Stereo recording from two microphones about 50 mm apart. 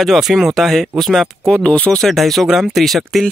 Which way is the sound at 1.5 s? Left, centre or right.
Left.